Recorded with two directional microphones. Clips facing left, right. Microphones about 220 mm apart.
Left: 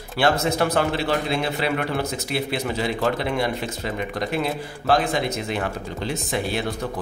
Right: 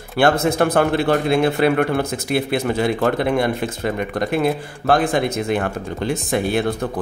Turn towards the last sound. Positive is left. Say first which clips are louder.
# right 6 dB
turn(degrees=-50)  # may be behind; listen again after turning